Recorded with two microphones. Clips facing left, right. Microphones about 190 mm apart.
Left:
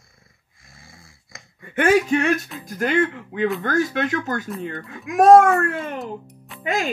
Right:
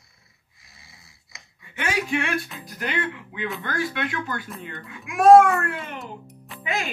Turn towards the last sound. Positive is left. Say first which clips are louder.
# left 5 dB
turn(degrees=45)  # may be behind; listen again after turning